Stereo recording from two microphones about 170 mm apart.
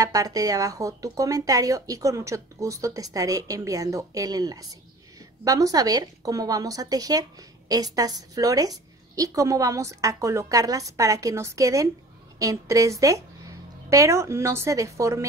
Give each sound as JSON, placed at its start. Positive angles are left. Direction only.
{"t": 0.0, "sound": "a woman's voice", "side_deg": -20}